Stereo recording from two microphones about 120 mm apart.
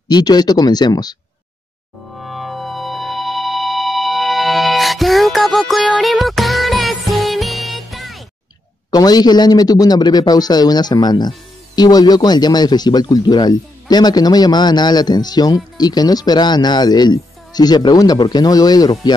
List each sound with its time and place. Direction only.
0.1 s a man's voice: 35° left (ahead or behind)
2.1 s music: centre (ahead or behind)
8.9 s a man's voice: 35° left (ahead or behind)